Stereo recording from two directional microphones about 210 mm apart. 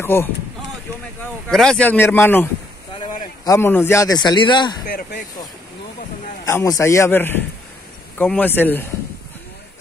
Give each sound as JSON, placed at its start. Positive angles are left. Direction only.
{"t": 0.0, "sound": "a man's voice", "side_deg": 10}
{"t": 1.5, "sound": "a man's voice", "side_deg": 5}
{"t": 4.8, "sound": "speech", "side_deg": 40}
{"t": 6.4, "sound": "a man's voice", "side_deg": 15}